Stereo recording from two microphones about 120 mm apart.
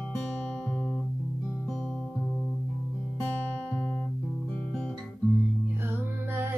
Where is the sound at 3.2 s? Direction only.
10° left (ahead or behind).